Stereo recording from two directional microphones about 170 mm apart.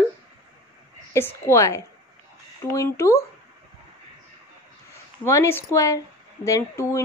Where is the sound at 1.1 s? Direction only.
15° left (ahead or behind).